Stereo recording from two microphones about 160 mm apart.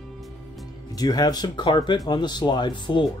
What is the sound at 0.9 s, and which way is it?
Speech, 25° left (ahead or behind).